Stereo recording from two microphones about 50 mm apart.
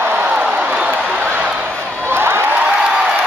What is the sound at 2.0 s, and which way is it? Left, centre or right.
Crowd, right.